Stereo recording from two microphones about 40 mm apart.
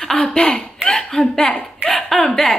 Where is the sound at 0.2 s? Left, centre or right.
Left.